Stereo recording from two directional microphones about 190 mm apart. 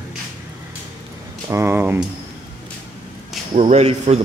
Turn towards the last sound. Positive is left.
turn(degrees=-35)  # may be behind; listen again after turning